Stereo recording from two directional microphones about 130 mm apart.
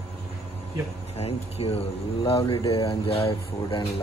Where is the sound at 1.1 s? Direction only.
50° left (ahead or behind).